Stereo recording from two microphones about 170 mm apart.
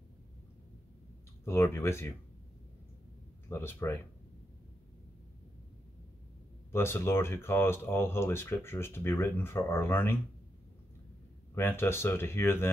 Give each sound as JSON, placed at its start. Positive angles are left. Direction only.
{"t": 1.4, "sound": "speech", "side_deg": 15}
{"t": 3.4, "sound": "speech", "side_deg": 15}
{"t": 6.7, "sound": "speech", "side_deg": 15}
{"t": 11.5, "sound": "speech", "side_deg": 15}